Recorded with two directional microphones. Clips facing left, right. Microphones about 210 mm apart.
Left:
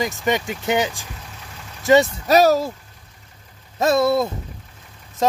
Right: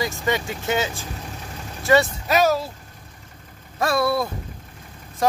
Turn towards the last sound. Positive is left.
turn(degrees=20)  # may be behind; listen again after turning